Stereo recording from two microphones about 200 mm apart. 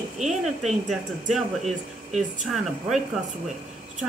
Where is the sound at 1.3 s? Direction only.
35° right (ahead or behind).